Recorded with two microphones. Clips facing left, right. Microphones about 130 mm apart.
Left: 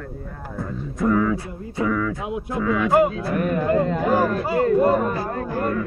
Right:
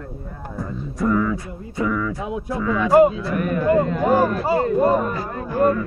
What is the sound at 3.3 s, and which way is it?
Speech, 35° left (ahead or behind).